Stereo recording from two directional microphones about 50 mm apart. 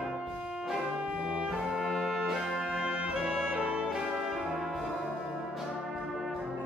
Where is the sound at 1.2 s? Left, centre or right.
Centre.